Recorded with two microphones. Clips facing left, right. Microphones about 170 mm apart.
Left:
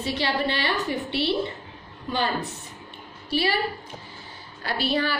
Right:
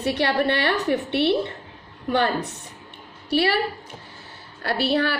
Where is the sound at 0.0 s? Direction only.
65° right (ahead or behind).